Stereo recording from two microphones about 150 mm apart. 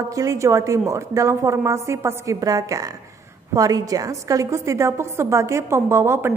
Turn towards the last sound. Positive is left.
turn(degrees=-15)  # may be behind; listen again after turning